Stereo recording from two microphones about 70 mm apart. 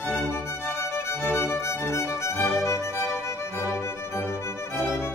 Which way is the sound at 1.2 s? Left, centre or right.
Left.